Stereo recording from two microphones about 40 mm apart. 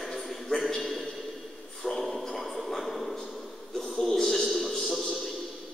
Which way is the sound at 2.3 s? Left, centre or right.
Centre.